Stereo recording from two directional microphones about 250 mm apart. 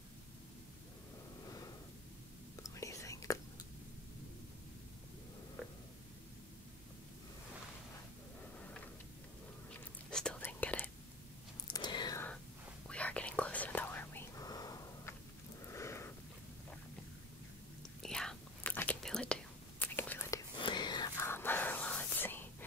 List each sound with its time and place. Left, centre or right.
2.5 s whispering: centre
10.1 s whispering: centre
11.6 s whispering: centre
15.7 s wheeze: centre
18.0 s whispering: centre